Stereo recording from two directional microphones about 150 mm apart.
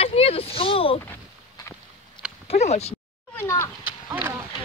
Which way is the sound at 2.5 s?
45° left (ahead or behind).